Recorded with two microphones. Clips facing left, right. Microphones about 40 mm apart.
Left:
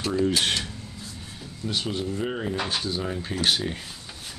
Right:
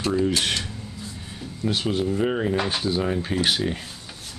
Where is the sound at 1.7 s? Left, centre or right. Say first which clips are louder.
Right 5 dB; centre.